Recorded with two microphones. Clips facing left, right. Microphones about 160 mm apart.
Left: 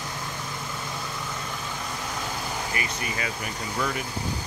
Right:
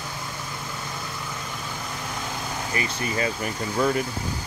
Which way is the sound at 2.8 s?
35° right (ahead or behind).